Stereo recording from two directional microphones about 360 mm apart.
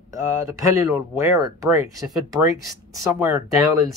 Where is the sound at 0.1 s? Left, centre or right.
Centre.